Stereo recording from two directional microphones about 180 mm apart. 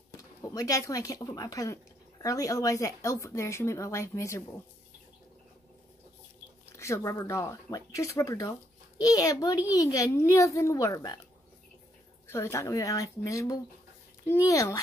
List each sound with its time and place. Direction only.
0.4 s a child's voice: 20° left (ahead or behind)
6.8 s a child's voice: 15° left (ahead or behind)
12.3 s a child's voice: 15° left (ahead or behind)